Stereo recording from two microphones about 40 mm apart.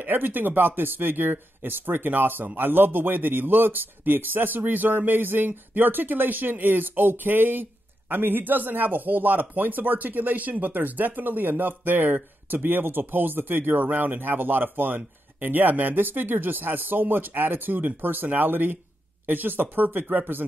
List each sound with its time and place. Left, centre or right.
0.0 s speech: right